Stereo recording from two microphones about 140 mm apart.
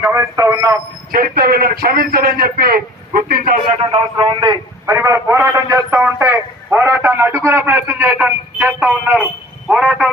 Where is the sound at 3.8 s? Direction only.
40° right (ahead or behind).